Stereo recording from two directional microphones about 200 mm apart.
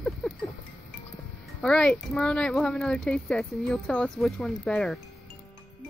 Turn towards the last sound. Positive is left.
turn(degrees=5)  # may be behind; listen again after turning